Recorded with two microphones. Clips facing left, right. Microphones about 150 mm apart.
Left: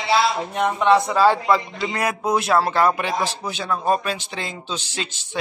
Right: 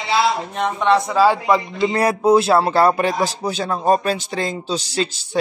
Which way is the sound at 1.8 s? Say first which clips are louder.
Right 7 dB; 35° right (ahead or behind).